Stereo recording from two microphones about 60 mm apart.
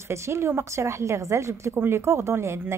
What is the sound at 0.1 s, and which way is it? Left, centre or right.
A woman's voice, right.